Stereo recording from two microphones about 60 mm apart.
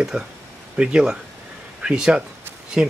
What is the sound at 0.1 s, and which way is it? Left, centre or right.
Speech, centre.